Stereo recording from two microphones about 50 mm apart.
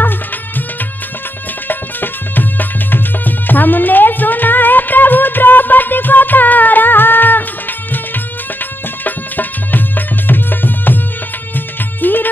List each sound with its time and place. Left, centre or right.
1.7 s music: left
9.0 s music: left